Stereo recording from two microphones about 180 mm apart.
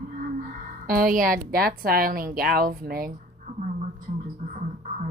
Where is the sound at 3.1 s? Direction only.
40° right (ahead or behind).